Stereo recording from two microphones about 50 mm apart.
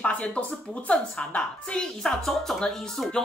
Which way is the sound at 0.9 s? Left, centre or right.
Centre.